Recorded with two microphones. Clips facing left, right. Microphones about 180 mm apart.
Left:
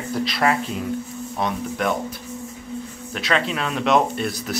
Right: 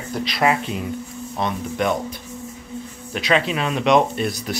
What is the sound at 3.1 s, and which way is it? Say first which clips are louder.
Speech: right 3 dB; 5° right (ahead or behind).